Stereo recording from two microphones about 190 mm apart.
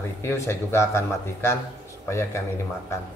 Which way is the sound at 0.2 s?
15° left (ahead or behind).